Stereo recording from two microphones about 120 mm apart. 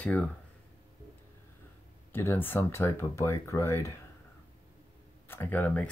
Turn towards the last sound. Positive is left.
turn(degrees=10)  # may be behind; listen again after turning